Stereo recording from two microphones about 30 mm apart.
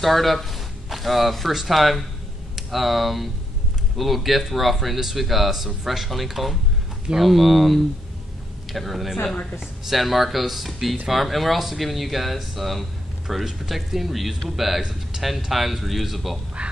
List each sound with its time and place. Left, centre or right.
0.0 s speech: centre
9.2 s a woman's voice: left
9.8 s speech: centre
14.8 s speech: centre
15.5 s speech: centre